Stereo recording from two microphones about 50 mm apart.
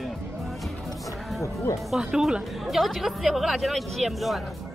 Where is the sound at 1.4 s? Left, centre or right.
Left.